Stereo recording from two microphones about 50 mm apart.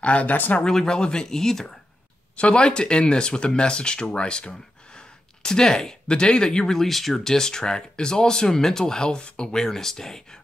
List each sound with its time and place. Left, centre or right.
0.0 s speech: left
0.6 s speech: centre
2.3 s speech: left